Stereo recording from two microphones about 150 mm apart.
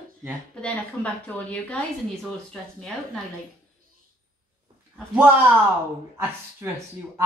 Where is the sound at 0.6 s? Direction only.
10° left (ahead or behind).